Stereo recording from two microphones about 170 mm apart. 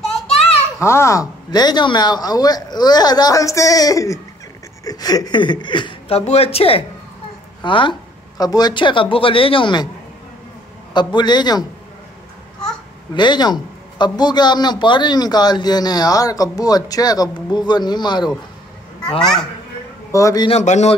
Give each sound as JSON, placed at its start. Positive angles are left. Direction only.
{"t": 0.7, "sound": "a child's voice", "side_deg": 15}
{"t": 10.9, "sound": "a man's voice", "side_deg": 25}
{"t": 13.1, "sound": "a man's voice", "side_deg": 25}
{"t": 20.1, "sound": "a man's voice", "side_deg": 20}
{"t": 20.4, "sound": "speech", "side_deg": 40}